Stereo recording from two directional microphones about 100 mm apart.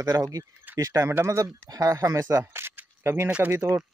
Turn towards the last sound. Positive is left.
turn(degrees=-30)  # may be behind; listen again after turning